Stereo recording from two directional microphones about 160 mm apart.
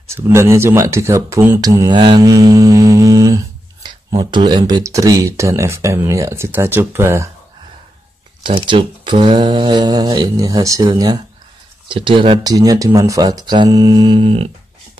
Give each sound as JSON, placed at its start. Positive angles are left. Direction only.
{"t": 0.1, "sound": "speech", "side_deg": -15}
{"t": 8.4, "sound": "speech", "side_deg": -30}
{"t": 12.5, "sound": "speech", "side_deg": -20}